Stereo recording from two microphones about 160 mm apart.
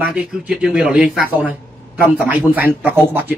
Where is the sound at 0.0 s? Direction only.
10° right (ahead or behind).